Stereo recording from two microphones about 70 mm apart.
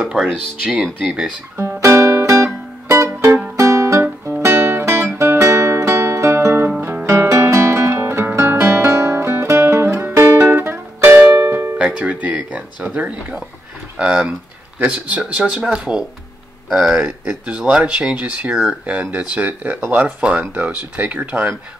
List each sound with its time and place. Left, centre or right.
0.0 s speech: centre
1.6 s music: right
11.8 s music: centre
13.9 s speech: centre